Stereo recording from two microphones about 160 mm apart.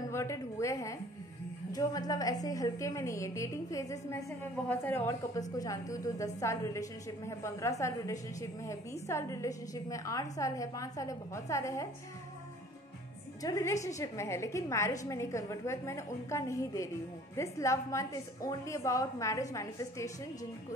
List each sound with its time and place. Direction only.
0.1 s a woman's voice: 20° left (ahead or behind)
13.4 s a woman's voice: 20° left (ahead or behind)